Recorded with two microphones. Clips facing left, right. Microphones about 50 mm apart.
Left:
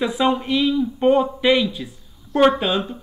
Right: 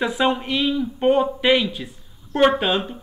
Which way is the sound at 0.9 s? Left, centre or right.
Centre.